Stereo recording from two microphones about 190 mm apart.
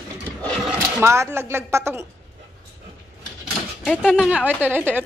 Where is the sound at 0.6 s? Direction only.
15° right (ahead or behind).